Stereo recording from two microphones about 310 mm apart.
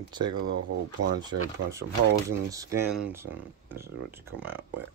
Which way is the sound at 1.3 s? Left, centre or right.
Right.